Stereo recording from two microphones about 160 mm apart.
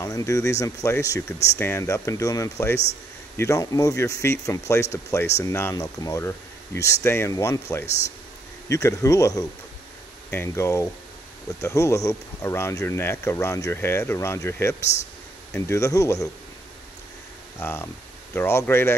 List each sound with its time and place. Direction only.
0.0 s speech: 20° left (ahead or behind)
8.6 s speech: 20° left (ahead or behind)
17.6 s speech: 15° left (ahead or behind)